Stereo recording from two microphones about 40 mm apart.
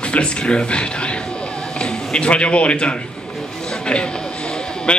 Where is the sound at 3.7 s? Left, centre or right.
Left.